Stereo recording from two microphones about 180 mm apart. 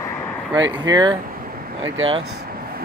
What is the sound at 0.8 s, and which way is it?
Speech, 25° right (ahead or behind).